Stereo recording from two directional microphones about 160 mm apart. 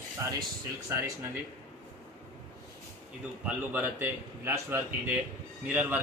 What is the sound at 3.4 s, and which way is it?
A man's voice, 10° right (ahead or behind).